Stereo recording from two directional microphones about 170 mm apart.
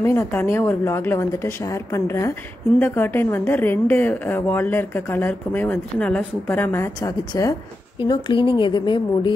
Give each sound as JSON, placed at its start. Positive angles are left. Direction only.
{"t": 0.0, "sound": "a woman's voice", "side_deg": 15}